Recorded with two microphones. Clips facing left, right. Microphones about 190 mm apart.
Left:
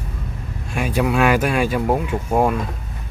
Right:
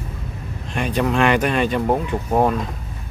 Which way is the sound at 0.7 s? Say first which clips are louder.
Left 1 dB; 5° left (ahead or behind).